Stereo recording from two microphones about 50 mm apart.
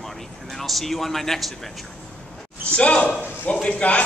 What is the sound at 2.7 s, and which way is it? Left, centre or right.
Speech, left.